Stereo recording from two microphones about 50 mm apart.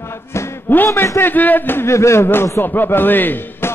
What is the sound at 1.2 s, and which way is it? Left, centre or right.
Music, left.